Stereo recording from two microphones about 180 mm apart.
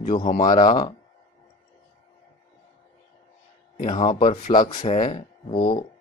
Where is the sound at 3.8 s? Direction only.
25° left (ahead or behind).